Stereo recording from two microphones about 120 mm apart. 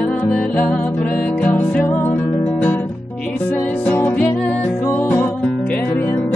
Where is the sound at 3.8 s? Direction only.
15° left (ahead or behind).